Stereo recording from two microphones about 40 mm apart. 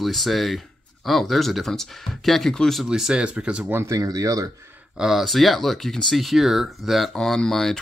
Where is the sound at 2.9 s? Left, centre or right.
Centre.